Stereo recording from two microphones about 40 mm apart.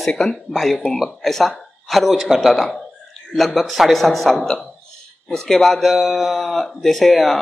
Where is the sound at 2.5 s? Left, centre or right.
Centre.